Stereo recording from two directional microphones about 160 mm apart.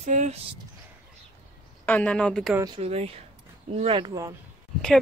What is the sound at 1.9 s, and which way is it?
Speech, 10° left (ahead or behind).